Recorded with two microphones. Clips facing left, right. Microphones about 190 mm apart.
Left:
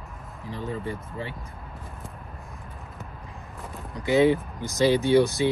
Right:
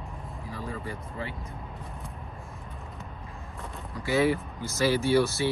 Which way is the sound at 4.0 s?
20° left (ahead or behind).